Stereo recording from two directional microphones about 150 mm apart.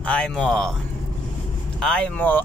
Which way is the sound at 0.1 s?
5° left (ahead or behind).